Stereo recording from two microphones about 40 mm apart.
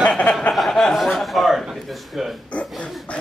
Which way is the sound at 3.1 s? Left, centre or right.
Left.